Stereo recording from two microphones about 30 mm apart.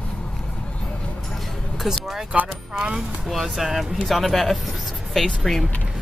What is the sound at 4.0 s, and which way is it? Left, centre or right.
Speech, centre.